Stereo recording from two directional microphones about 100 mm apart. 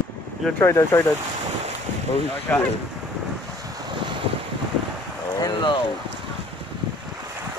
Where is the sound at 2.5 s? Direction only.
15° left (ahead or behind).